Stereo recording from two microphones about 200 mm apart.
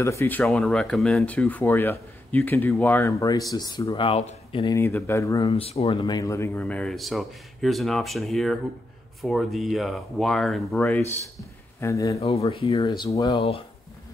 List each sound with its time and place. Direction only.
0.0 s speech: 15° left (ahead or behind)
4.7 s speech: 10° left (ahead or behind)
5.5 s speech: 30° left (ahead or behind); by 11.0 s 5° left (ahead or behind)
11.8 s speech: 15° left (ahead or behind)
12.2 s speech: 30° left (ahead or behind)
13.4 s speech: 30° left (ahead or behind)